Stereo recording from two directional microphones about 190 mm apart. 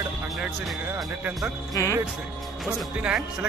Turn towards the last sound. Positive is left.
turn(degrees=-5)  # may be behind; listen again after turning